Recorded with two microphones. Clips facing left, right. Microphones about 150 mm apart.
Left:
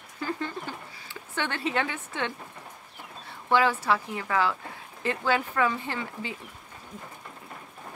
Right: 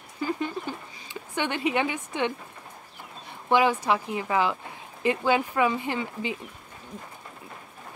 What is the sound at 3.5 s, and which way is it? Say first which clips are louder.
Speech: right 2 dB; 15° right (ahead or behind).